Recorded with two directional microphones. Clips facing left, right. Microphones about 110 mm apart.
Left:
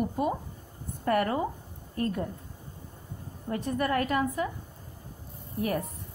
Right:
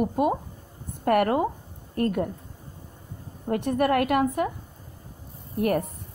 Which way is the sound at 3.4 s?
60° right (ahead or behind).